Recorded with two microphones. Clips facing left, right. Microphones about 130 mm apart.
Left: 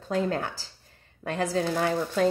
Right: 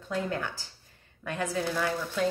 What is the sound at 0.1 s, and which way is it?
Speech, 35° left (ahead or behind).